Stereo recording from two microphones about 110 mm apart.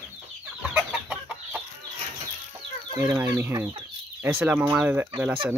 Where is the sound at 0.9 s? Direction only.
5° right (ahead or behind).